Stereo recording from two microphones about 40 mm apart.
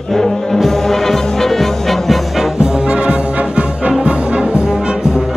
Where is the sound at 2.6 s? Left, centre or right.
Centre.